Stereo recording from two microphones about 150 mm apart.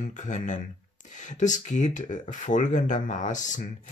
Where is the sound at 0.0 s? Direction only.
55° left (ahead or behind).